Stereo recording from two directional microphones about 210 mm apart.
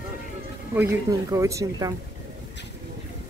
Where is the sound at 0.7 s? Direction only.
10° right (ahead or behind).